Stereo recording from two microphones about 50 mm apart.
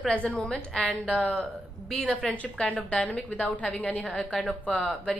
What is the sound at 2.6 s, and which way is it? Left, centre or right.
A woman's voice, left.